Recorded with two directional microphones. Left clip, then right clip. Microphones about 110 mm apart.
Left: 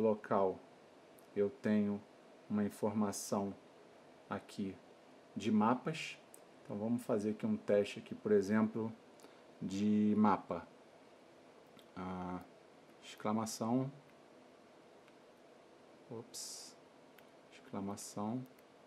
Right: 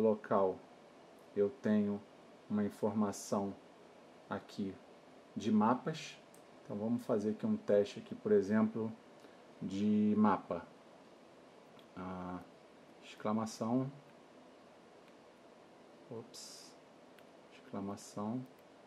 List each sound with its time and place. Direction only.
0.0 s speech: 20° left (ahead or behind)
5.4 s speech: 20° left (ahead or behind)
12.0 s speech: 30° left (ahead or behind)
16.3 s speech: 30° left (ahead or behind)
17.7 s speech: 25° left (ahead or behind)